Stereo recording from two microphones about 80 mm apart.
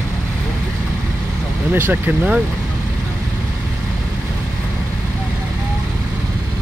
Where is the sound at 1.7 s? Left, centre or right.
Right.